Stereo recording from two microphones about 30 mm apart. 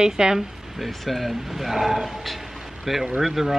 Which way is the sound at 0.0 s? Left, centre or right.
Right.